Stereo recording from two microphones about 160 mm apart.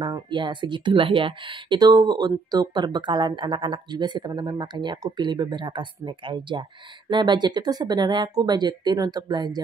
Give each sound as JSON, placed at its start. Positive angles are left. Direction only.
{"t": 0.0, "sound": "speech", "side_deg": -30}